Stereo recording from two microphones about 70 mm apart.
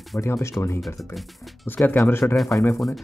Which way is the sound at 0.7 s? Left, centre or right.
Centre.